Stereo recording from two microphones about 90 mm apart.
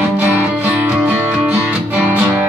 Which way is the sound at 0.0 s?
15° right (ahead or behind).